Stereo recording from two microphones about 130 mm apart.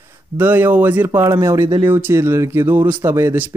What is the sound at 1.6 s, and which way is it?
Speech, 35° right (ahead or behind).